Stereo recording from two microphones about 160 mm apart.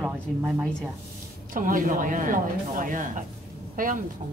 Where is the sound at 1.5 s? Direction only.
55° right (ahead or behind).